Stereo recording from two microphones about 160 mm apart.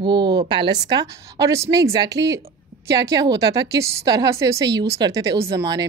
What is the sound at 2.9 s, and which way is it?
A woman's voice, 25° right (ahead or behind).